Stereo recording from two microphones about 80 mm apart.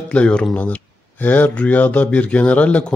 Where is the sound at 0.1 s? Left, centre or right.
Centre.